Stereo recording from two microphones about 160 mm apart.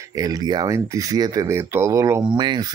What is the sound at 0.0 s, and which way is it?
Speech, 20° right (ahead or behind).